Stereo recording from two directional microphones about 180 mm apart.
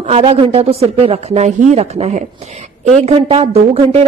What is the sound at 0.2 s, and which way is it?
Speech, 30° right (ahead or behind).